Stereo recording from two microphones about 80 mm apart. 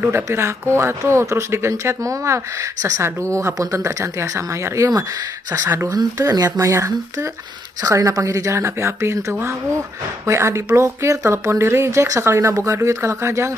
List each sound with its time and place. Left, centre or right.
0.0 s speech: right
6.3 s speech: right
6.6 s speech: right
10.2 s speech: right